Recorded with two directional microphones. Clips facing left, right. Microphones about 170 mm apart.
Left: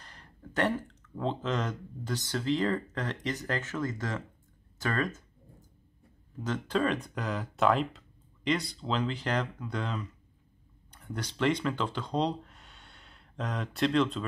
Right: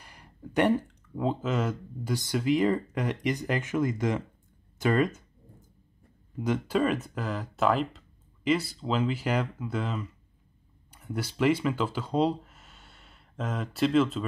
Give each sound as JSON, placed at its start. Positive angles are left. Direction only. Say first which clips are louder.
{"t": 0.0, "sound": "speech", "louder": "right 4 dB", "side_deg": -10}
{"t": 6.3, "sound": "speech", "louder": "right 4 dB", "side_deg": -10}